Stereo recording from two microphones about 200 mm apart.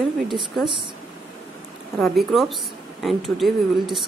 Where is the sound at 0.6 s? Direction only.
25° right (ahead or behind).